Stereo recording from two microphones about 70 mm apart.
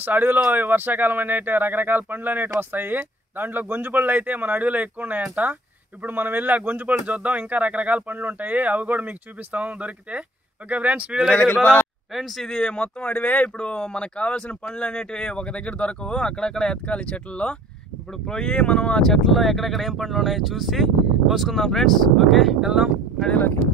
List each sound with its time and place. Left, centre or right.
0.0 s speech: right
11.5 s a man's voice: left
12.1 s speech: centre
12.4 s speech: centre